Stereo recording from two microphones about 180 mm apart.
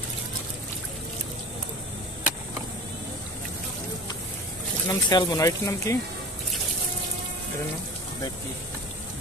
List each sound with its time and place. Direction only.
4.8 s speech: 20° left (ahead or behind)